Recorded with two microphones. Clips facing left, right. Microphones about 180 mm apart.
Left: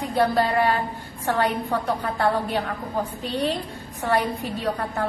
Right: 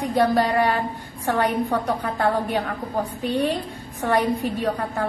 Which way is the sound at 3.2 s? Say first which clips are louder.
Right 5 dB; 10° right (ahead or behind).